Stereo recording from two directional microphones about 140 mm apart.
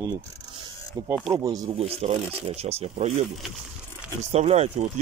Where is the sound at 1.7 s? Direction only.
45° right (ahead or behind).